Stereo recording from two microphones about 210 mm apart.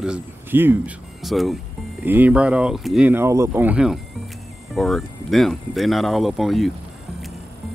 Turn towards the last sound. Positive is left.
turn(degrees=0)  # may be behind; listen again after turning